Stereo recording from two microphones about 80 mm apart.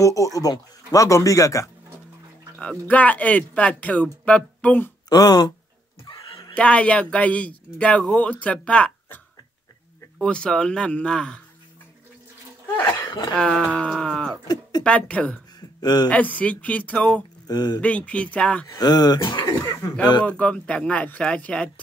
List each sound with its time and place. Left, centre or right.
0.0 s speech: left
2.9 s speech: centre
5.1 s speech: left
6.5 s speech: centre
10.2 s speech: centre
12.8 s a sound: left
13.3 s speech: centre
15.8 s speech: left
16.1 s speech: centre
17.5 s speech: left
17.7 s speech: centre
18.7 s speech: left
20.2 s speech: centre